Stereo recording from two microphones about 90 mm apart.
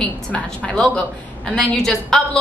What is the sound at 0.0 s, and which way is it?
A woman's voice, 15° left (ahead or behind).